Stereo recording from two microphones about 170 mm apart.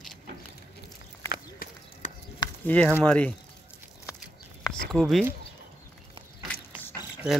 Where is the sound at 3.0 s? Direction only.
10° left (ahead or behind).